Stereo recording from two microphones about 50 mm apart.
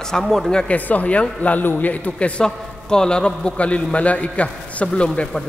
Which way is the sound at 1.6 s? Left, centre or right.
Left.